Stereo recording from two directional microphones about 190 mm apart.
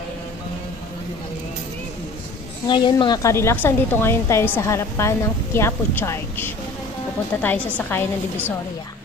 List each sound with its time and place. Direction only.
2.7 s a woman's voice: 25° left (ahead or behind); by 8.0 s 10° left (ahead or behind)